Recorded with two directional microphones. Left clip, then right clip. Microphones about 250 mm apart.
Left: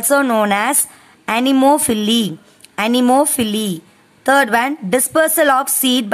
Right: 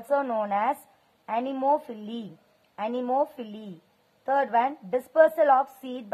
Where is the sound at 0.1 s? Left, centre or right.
Left.